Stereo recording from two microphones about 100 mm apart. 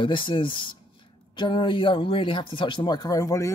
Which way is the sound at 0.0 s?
55° left (ahead or behind).